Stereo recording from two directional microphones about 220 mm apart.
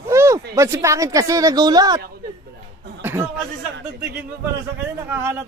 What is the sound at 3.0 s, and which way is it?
Chatter, 10° right (ahead or behind).